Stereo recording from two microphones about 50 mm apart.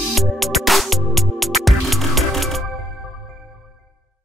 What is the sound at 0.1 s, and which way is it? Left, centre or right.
Music, centre.